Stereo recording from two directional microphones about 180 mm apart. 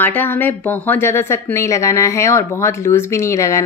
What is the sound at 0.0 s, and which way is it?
A woman's voice, 10° left (ahead or behind).